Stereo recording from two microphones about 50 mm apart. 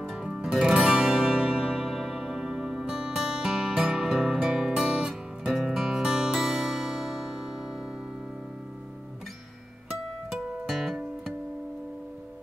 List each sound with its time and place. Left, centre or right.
0.1 s music: centre
5.6 s music: centre
10.3 s music: centre